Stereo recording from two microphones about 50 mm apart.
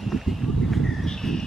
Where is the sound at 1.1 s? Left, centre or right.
Centre.